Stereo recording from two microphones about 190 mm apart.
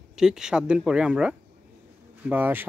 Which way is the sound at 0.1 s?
5° right (ahead or behind).